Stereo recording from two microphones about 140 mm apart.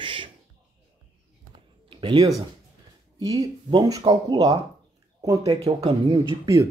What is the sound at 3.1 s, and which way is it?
Speech, 25° right (ahead or behind).